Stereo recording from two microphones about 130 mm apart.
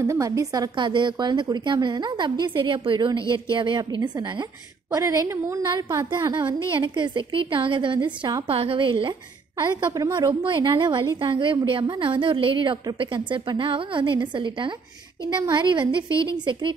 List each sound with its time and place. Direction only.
0.0 s a woman's voice: 25° right (ahead or behind)
4.9 s a woman's voice: 25° right (ahead or behind)
6.1 s a woman's voice: 35° right (ahead or behind)
9.6 s a woman's voice: 30° right (ahead or behind)
10.4 s a woman's voice: 40° right (ahead or behind)